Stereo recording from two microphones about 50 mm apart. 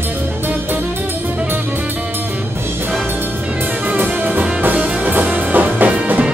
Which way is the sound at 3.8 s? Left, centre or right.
Right.